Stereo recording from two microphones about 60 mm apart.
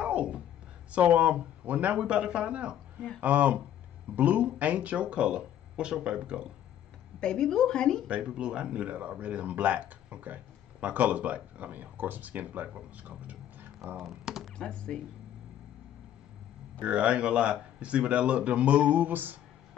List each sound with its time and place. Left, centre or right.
0.0 s a sound: right
0.9 s speech: right
3.2 s speech: right
7.2 s a woman's voice: centre
8.1 s speech: centre
14.2 s a sound: centre
14.6 s a woman's voice: centre
16.8 s speech: centre